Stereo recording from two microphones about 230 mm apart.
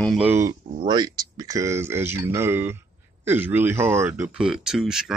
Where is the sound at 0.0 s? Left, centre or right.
Centre.